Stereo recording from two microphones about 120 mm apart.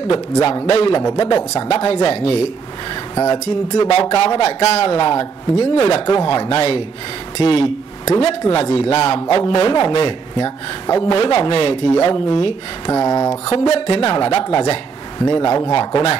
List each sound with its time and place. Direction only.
0.1 s a man's voice: 45° left (ahead or behind)
3.7 s a man's voice: 45° left (ahead or behind)
12.9 s speech: 25° left (ahead or behind)
13.5 s a man's voice: 50° left (ahead or behind)